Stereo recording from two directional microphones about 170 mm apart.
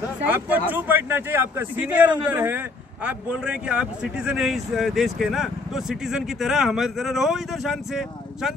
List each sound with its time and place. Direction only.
0.2 s a man's voice: 10° right (ahead or behind)